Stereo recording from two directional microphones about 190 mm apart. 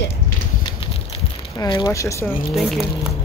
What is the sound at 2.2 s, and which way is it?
Speech, centre (ahead or behind).